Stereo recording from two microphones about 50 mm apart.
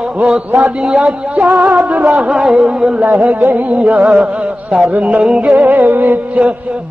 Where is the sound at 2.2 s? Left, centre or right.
Right.